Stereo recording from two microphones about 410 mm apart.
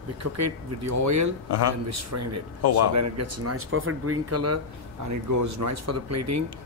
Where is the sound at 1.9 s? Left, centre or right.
Right.